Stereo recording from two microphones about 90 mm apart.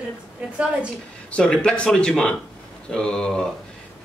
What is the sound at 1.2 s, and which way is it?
A man's voice, 10° left (ahead or behind).